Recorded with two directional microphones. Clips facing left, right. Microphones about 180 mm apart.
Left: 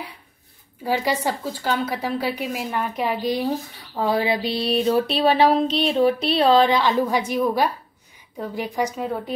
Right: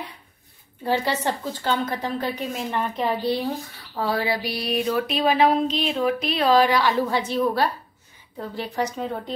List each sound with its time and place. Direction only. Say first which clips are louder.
0.8 s a woman's voice: left 1 dB; 10° left (ahead or behind)
3.9 s a sound: left 3 dB; 20° left (ahead or behind)
8.4 s a woman's voice: left 2 dB; 10° left (ahead or behind)